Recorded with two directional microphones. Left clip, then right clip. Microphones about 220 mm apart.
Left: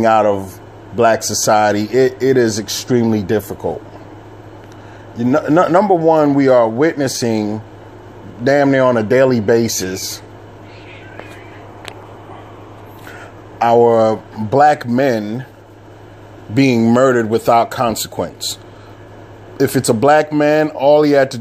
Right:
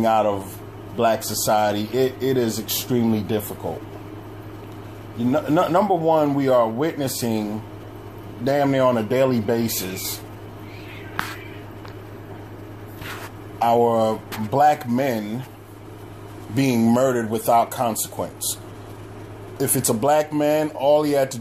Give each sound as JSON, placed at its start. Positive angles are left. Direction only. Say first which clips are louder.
{"t": 0.0, "sound": "a man's voice", "louder": "left 7 dB", "side_deg": 40}
{"t": 5.3, "sound": "a man's voice", "louder": "left 7 dB", "side_deg": 40}
{"t": 13.6, "sound": "a man's voice", "louder": "left 7 dB", "side_deg": 40}
{"t": 16.5, "sound": "speech", "louder": "left 7 dB", "side_deg": 45}